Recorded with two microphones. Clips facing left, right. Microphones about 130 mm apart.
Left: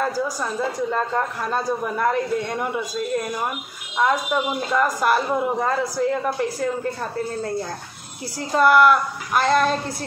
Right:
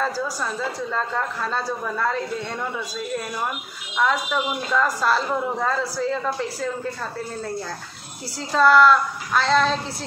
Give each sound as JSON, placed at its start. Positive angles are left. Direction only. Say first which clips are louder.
{"t": 0.0, "sound": "a man's voice", "louder": "left 2 dB", "side_deg": 15}
{"t": 4.1, "sound": "a man's voice", "louder": "left 2 dB", "side_deg": 15}
{"t": 8.4, "sound": "a man's voice", "louder": "even", "side_deg": 15}